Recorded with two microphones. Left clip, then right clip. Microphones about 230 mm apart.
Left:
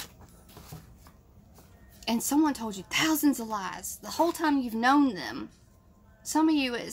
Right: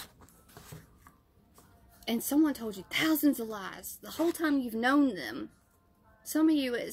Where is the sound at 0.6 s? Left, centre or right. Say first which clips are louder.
Left 1 dB; right.